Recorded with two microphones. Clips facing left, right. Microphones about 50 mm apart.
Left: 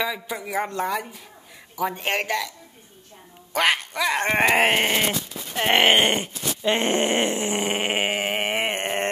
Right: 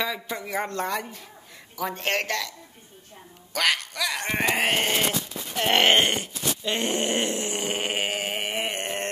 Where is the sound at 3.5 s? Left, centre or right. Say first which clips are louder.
Left 3 dB; left.